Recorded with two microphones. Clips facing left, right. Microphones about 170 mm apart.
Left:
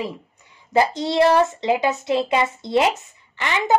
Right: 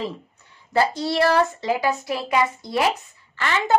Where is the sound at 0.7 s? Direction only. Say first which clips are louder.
Left 3 dB; 20° left (ahead or behind).